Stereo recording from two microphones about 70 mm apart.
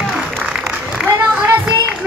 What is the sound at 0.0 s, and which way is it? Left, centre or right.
Applause, centre.